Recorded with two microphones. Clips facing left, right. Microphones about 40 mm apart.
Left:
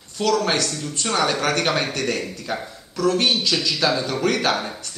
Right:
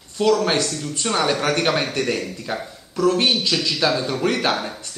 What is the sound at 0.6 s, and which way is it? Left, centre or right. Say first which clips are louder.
Speech: right 1 dB; centre.